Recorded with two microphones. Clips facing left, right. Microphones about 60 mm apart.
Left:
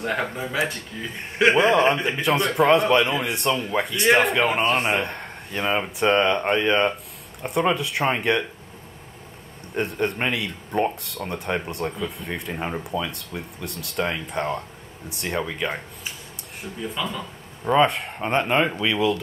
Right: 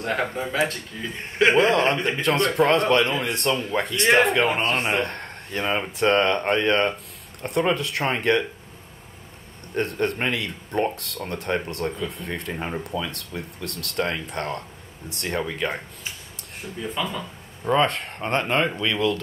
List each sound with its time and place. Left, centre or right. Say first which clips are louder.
0.0 s a man's voice: right 1 dB; centre
9.8 s a man's voice: even; centre